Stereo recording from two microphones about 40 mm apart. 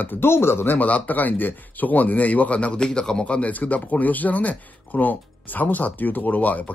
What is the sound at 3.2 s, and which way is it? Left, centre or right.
Speech, left.